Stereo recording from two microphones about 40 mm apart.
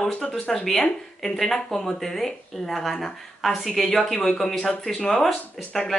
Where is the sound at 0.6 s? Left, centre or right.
Centre.